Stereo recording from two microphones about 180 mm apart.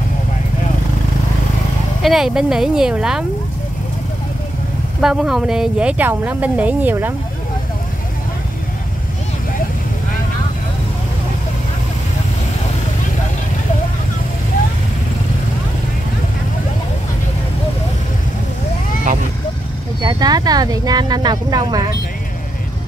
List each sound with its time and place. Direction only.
2.0 s speech: centre (ahead or behind)
5.0 s speech: 5° right (ahead or behind)
20.0 s speech: 20° right (ahead or behind)